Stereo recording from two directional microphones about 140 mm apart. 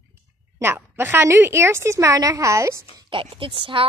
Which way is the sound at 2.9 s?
35° right (ahead or behind).